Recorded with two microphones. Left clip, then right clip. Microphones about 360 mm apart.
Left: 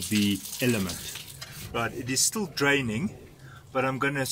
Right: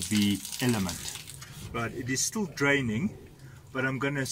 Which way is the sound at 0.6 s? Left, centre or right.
Centre.